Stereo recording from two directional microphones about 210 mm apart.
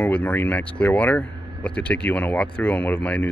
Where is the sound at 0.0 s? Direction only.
10° left (ahead or behind).